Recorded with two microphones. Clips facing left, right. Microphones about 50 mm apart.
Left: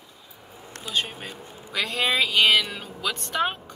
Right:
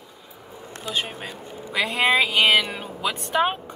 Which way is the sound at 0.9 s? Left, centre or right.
Centre.